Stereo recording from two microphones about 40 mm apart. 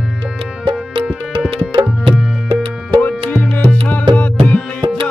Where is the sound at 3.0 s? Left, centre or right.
Left.